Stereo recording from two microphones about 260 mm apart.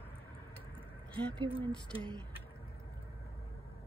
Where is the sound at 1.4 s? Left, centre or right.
Centre.